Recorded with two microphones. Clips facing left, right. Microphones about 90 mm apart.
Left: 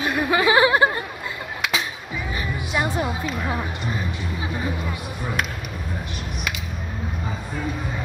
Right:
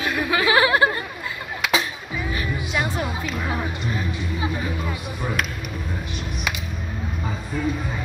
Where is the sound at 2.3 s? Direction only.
25° left (ahead or behind).